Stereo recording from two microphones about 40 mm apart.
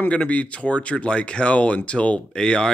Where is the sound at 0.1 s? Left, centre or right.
Left.